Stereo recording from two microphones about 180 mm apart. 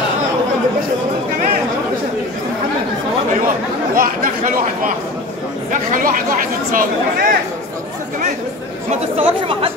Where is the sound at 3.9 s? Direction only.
50° right (ahead or behind).